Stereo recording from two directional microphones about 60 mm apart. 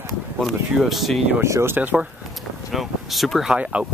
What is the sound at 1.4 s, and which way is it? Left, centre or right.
Speech, right.